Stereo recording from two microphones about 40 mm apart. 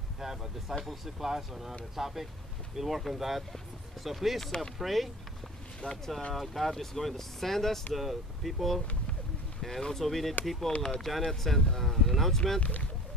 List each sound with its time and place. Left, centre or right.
0.2 s speech: centre
5.8 s speech: left
6.3 s speech: centre
7.9 s speech: centre